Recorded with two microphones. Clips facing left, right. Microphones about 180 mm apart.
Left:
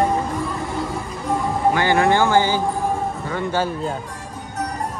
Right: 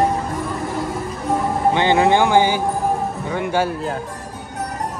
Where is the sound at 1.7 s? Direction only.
20° right (ahead or behind).